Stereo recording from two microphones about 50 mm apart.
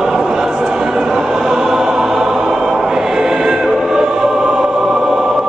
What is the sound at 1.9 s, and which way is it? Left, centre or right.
Music, centre.